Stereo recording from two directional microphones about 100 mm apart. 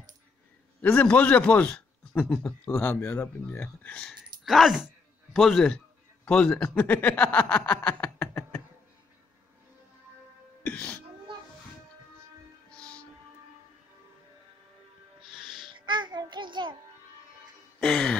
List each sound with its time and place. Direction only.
0.7 s a man's voice: 20° left (ahead or behind)
4.5 s a man's voice: centre (ahead or behind); by 8.6 s 15° left (ahead or behind)
10.6 s music: 15° left (ahead or behind)
12.7 s music: 10° left (ahead or behind)
15.2 s music: 5° right (ahead or behind)
15.7 s music: 50° right (ahead or behind)
17.7 s a sound: 5° left (ahead or behind)